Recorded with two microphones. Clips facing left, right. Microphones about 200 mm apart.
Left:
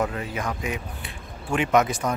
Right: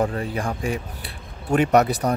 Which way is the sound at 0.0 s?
35° right (ahead or behind).